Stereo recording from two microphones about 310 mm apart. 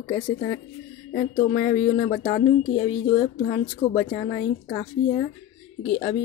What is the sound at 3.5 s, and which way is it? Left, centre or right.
Speech, left.